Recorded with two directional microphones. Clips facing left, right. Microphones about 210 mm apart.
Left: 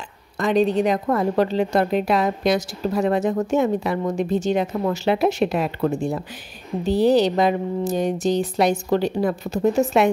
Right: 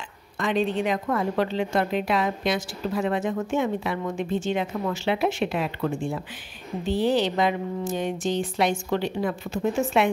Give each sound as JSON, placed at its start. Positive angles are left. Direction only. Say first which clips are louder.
{"t": 0.4, "sound": "a woman's voice", "louder": "left 6 dB", "side_deg": 40}